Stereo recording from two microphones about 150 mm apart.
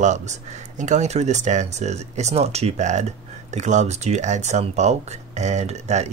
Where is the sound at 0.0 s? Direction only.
50° right (ahead or behind).